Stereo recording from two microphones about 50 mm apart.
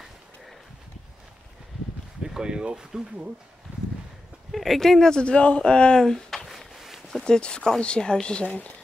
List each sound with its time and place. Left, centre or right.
2.2 s speech: centre
3.7 s a sound: right
4.5 s speech: centre
5.2 s speech: left; by 6.6 s centre
6.7 s a sound: centre
7.2 s speech: centre